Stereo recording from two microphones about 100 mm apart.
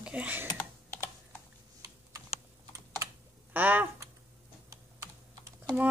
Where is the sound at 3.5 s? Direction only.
20° right (ahead or behind).